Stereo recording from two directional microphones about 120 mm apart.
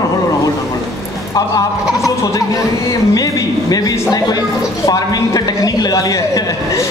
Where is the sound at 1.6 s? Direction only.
30° left (ahead or behind).